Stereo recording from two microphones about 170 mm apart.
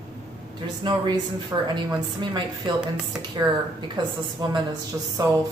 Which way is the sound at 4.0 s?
25° right (ahead or behind).